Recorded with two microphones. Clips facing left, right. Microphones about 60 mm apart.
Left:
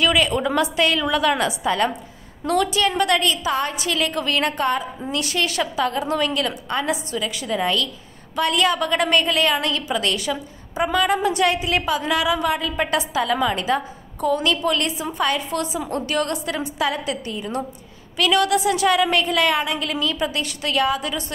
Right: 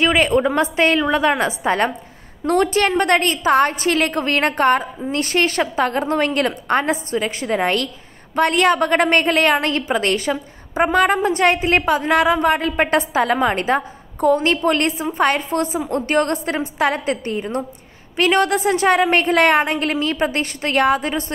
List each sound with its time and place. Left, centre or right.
0.0 s a woman's voice: right